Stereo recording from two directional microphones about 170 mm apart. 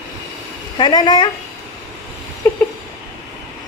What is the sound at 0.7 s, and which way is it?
Speech, 25° left (ahead or behind).